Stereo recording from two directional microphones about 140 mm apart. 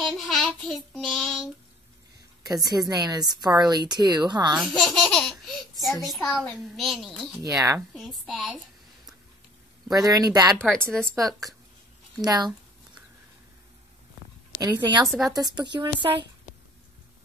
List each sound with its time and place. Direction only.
0.0 s child singing: centre (ahead or behind)
2.4 s speech: 25° right (ahead or behind)
4.6 s baby laughter: centre (ahead or behind)
6.4 s a child's voice: centre (ahead or behind)
7.4 s speech: 20° right (ahead or behind)
7.9 s a child's voice: centre (ahead or behind)
10.0 s speech: 25° right (ahead or behind)
10.6 s a child's voice: 5° left (ahead or behind)
12.2 s speech: 30° right (ahead or behind)
14.6 s speech: 30° right (ahead or behind)
15.0 s a child's voice: centre (ahead or behind)
15.3 s speech: 30° right (ahead or behind)